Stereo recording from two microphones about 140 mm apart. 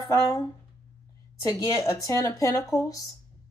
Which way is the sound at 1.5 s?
20° left (ahead or behind).